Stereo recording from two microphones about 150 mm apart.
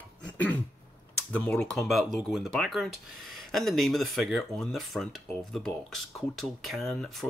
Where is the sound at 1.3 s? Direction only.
10° left (ahead or behind).